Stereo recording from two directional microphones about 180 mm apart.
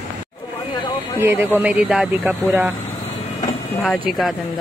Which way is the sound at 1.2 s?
10° right (ahead or behind).